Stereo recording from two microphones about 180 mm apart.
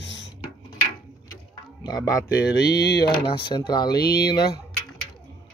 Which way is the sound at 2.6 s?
65° left (ahead or behind).